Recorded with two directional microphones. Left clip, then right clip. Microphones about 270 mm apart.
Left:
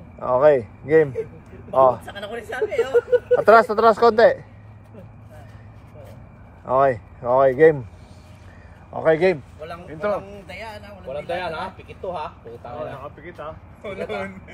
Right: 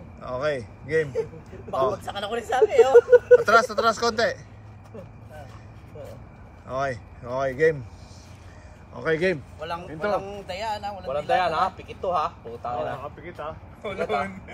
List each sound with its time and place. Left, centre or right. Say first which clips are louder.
0.2 s speech: left 12 dB; centre
2.0 s speech: right 3 dB; centre
3.4 s speech: left 6 dB; centre
6.7 s speech: left 10 dB; centre
8.9 s speech: left 6 dB; centre
9.9 s speech: left 2 dB; centre
11.1 s speech: right 4 dB; centre
12.7 s speech: right 1 dB; centre